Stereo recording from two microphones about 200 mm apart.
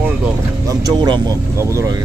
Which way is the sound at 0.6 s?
20° right (ahead or behind).